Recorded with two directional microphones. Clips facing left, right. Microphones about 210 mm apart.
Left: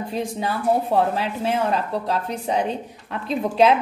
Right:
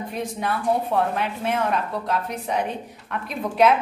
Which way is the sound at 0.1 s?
30° left (ahead or behind).